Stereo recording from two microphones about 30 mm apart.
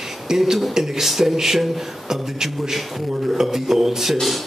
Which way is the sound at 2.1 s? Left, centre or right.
Centre.